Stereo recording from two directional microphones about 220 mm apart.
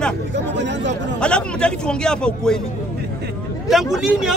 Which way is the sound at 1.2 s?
5° left (ahead or behind).